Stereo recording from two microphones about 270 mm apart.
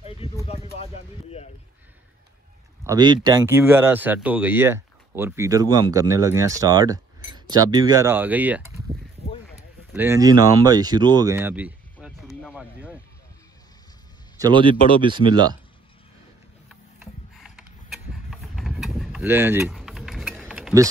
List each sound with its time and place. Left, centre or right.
0.5 s a sound: left
2.8 s speech: centre
9.9 s speech: centre
11.1 s a sound: centre
14.4 s speech: centre
16.6 s vehicle: centre